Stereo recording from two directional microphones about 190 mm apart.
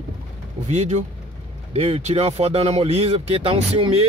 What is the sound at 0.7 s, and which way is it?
Speech, 35° right (ahead or behind).